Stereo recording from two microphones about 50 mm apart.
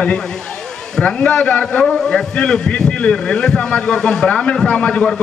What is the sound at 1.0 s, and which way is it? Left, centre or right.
A man's voice, left.